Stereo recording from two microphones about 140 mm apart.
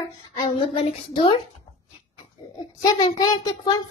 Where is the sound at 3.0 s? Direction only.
35° left (ahead or behind).